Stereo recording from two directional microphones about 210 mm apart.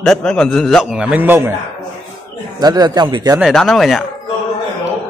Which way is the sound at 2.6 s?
20° right (ahead or behind).